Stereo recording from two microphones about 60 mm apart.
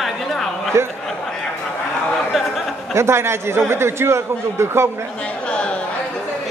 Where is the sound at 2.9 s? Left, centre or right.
Right.